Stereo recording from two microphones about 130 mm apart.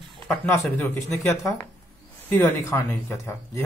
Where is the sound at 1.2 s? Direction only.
15° left (ahead or behind).